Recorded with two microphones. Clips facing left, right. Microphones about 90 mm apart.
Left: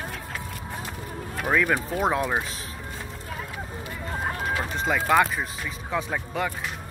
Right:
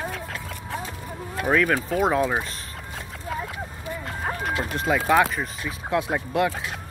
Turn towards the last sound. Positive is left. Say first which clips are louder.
# right 5 dB
turn(degrees=-10)  # may be behind; listen again after turning